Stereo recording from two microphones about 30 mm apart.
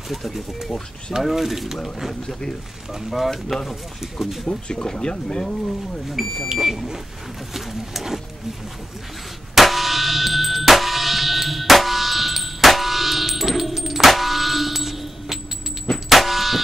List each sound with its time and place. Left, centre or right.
1.2 s pigeon: centre
2.9 s pigeon: centre
4.5 s speech: left
6.2 s pigeon: centre
9.6 s clang: centre
16.1 s a sound: centre